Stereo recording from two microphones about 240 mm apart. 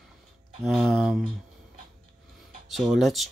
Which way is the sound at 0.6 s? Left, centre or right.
Centre.